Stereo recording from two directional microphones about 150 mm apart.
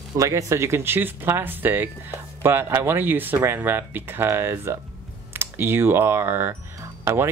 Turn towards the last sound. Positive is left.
turn(degrees=-15)  # may be behind; listen again after turning